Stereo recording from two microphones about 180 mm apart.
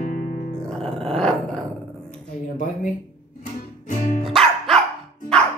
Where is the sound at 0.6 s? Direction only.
Centre (ahead or behind).